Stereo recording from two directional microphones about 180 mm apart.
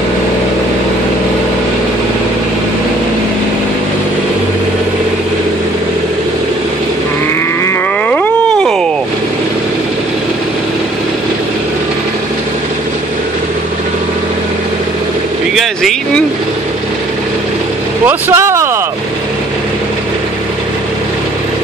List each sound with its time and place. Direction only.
7.6 s grunt: 5° left (ahead or behind)
15.5 s vehicle: centre (ahead or behind)
18.0 s speech: 15° right (ahead or behind)